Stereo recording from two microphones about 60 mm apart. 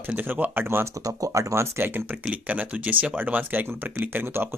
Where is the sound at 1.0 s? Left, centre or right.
Right.